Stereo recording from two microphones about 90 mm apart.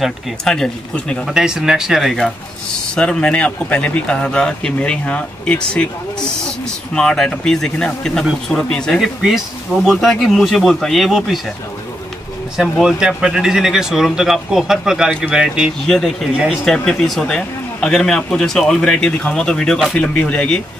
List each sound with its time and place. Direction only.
0.0 s a man's voice: 5° left (ahead or behind)
1.2 s speech: 5° right (ahead or behind)
3.0 s a man's voice: 10° left (ahead or behind)
6.9 s a man's voice: 5° left (ahead or behind)
12.8 s speech: 5° right (ahead or behind)
15.8 s a man's voice: 5° left (ahead or behind)